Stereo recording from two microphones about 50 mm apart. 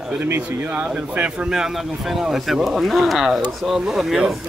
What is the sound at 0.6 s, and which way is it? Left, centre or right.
Speech, right.